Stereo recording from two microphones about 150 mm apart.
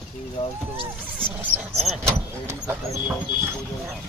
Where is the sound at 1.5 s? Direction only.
10° right (ahead or behind).